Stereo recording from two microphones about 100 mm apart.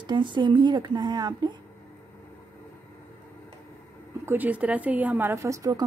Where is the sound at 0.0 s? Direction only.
50° right (ahead or behind).